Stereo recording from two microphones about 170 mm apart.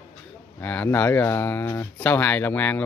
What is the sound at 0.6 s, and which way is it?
Speech, 10° left (ahead or behind).